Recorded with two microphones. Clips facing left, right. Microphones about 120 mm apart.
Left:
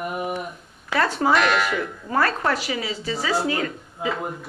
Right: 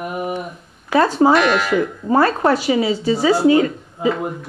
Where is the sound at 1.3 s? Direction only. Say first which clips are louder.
Right 5 dB; centre (ahead or behind).